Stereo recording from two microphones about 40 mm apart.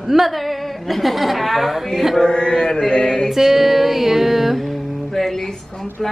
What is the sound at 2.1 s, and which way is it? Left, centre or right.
Mantra, centre.